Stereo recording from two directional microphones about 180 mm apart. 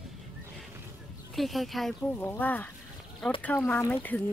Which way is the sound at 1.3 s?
Centre (ahead or behind).